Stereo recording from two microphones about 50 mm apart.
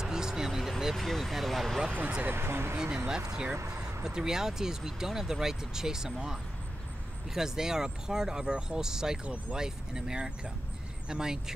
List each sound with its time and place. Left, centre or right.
0.0 s vehicle: centre
1.0 s speech: centre
2.2 s speech: right
3.1 s speech: centre
9.2 s speech: right
9.6 s speech: centre